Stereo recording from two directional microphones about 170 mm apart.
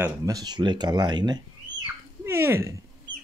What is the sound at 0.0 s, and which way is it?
Speech, 20° right (ahead or behind).